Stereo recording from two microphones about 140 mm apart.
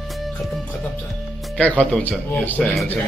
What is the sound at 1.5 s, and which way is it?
Speech, 10° left (ahead or behind).